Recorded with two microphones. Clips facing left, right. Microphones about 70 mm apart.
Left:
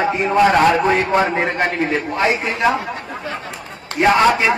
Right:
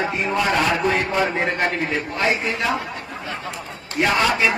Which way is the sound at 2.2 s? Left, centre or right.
Left.